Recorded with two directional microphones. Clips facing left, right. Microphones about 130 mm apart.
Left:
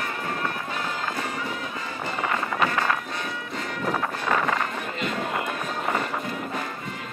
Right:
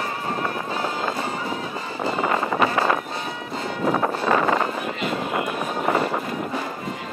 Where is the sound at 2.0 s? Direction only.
30° right (ahead or behind).